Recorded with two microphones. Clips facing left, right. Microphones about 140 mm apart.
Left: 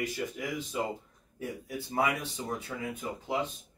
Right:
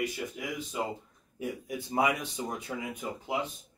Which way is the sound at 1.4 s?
15° right (ahead or behind).